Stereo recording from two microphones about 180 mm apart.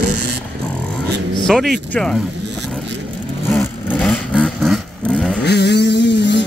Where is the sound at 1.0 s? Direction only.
75° right (ahead or behind).